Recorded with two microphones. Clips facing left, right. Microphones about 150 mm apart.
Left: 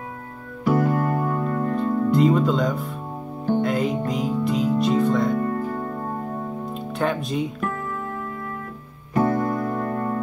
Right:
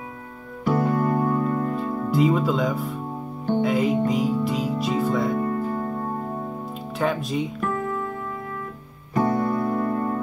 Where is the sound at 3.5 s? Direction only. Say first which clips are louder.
Right 3 dB; centre (ahead or behind).